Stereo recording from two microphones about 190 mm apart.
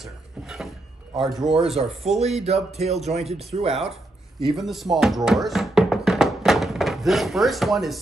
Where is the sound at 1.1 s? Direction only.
Centre (ahead or behind).